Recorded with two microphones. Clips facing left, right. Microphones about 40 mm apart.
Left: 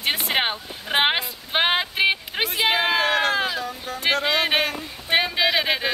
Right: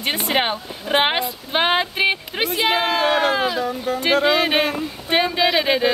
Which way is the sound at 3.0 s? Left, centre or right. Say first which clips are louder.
Right 3 dB; centre.